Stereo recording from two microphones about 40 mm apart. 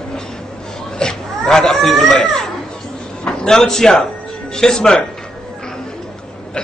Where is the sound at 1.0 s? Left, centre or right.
Centre.